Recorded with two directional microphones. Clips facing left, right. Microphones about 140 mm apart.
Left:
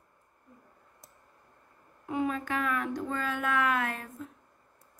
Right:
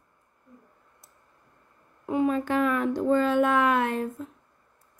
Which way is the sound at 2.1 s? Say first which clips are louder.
Right 6 dB; 35° right (ahead or behind).